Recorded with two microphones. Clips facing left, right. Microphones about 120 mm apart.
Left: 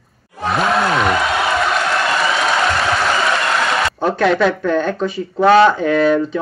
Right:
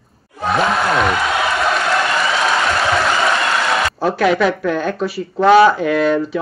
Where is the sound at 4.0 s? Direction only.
5° right (ahead or behind).